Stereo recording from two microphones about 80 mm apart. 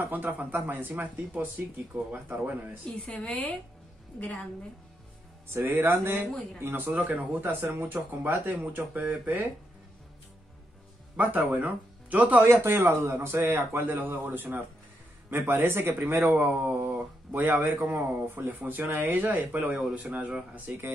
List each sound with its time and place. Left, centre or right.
0.1 s speech: right
3.1 s a woman's voice: centre
5.5 s speech: right
11.1 s speech: centre
12.4 s speech: right